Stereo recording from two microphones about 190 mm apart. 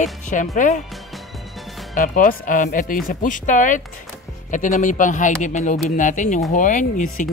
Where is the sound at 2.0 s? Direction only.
45° left (ahead or behind).